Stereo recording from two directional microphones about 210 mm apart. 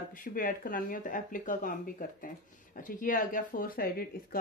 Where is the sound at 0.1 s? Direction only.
40° left (ahead or behind).